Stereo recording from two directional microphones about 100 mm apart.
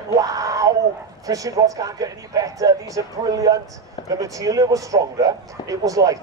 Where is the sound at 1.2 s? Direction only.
35° right (ahead or behind).